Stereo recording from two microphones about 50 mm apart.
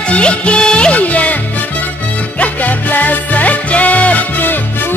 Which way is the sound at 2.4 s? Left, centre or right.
Left.